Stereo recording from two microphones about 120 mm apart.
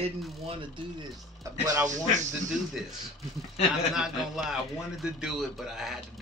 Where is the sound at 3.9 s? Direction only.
5° right (ahead or behind).